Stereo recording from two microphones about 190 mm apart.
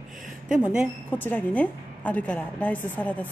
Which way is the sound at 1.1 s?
10° left (ahead or behind).